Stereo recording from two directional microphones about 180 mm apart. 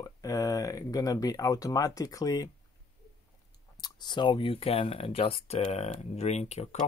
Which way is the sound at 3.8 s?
25° left (ahead or behind).